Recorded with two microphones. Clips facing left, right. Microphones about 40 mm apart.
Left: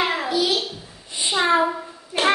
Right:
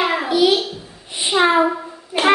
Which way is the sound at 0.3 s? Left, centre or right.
Right.